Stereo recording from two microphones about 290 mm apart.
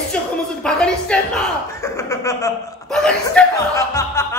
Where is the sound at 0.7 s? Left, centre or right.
Centre.